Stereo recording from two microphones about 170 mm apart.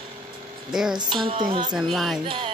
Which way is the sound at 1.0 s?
30° right (ahead or behind).